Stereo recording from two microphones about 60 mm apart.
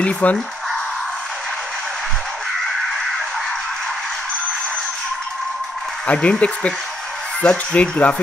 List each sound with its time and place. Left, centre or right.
0.0 s speech: left
6.0 s speech: left